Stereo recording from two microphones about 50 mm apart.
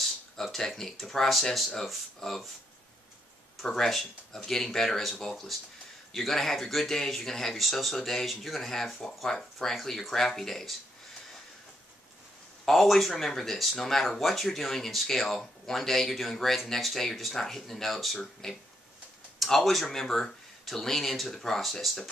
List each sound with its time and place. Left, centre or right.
0.0 s speech: centre
3.6 s speech: centre
12.6 s speech: centre